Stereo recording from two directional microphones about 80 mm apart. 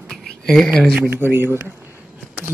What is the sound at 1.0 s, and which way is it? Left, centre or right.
Speech, right.